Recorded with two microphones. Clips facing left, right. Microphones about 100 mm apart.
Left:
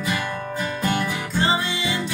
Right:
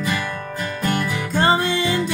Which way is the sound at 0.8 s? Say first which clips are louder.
Right 2 dB; 20° left (ahead or behind).